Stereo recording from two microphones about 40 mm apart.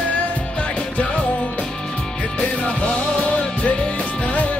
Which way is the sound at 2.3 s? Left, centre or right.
Left.